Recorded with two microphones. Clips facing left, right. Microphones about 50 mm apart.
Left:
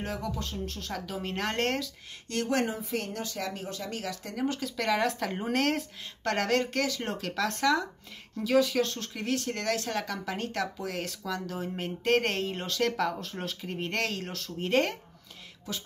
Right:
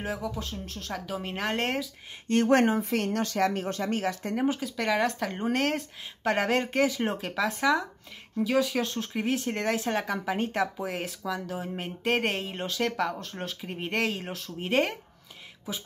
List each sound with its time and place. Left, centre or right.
0.0 s speech: centre
2.2 s speech: right
4.5 s speech: centre
6.3 s speech: centre
9.1 s speech: centre